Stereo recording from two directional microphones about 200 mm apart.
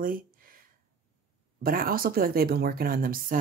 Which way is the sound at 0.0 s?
45° right (ahead or behind).